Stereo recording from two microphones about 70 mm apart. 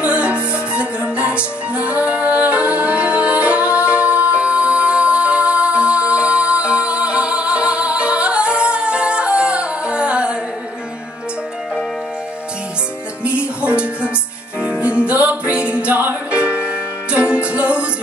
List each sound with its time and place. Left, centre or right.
0.0 s music: centre
13.2 s music: centre